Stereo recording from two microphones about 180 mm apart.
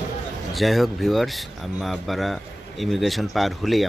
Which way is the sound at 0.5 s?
Centre (ahead or behind).